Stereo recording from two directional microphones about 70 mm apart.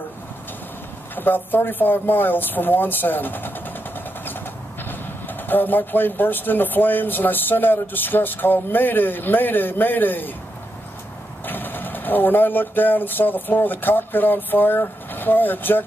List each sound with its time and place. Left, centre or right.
1.1 s speech: left
11.4 s speech: left